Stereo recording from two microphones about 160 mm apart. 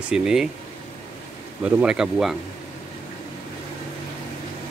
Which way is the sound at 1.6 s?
5° right (ahead or behind).